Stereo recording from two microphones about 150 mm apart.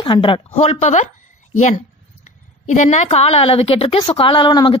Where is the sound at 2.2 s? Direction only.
50° left (ahead or behind).